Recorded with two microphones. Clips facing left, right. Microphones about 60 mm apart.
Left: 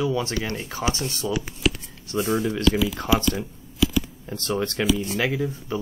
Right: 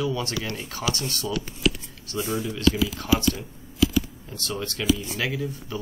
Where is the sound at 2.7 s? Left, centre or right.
Left.